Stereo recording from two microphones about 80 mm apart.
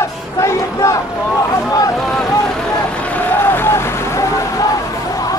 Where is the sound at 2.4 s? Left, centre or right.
Centre; by 4.7 s left.